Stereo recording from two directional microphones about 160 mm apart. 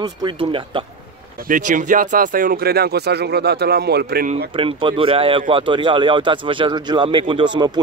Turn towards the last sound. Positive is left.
turn(degrees=-30)  # may be behind; listen again after turning